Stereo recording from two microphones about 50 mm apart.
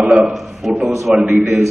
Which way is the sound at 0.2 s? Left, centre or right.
Centre.